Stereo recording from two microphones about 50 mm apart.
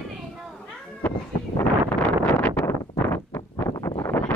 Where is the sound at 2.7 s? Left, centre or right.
Left.